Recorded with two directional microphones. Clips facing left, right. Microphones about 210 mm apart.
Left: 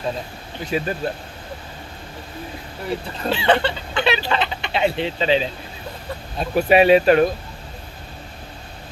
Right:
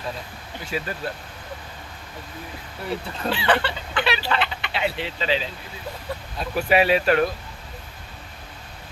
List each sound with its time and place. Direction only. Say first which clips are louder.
0.7 s speech: left 6 dB; 25° left (ahead or behind)
3.3 s speech: left 4 dB; 25° left (ahead or behind)